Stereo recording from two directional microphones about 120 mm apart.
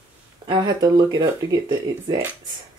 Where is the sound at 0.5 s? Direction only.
35° right (ahead or behind).